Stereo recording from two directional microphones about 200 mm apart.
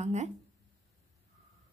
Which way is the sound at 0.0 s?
35° right (ahead or behind).